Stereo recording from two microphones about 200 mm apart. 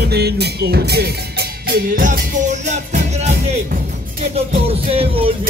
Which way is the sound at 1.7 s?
40° right (ahead or behind).